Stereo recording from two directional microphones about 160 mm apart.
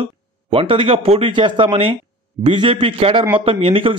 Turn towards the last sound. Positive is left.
turn(degrees=-35)  # may be behind; listen again after turning